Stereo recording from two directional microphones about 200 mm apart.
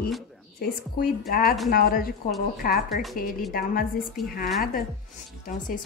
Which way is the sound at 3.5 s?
45° left (ahead or behind).